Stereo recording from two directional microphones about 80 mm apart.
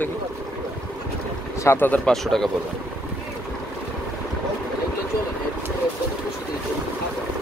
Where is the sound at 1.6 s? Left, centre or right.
Left.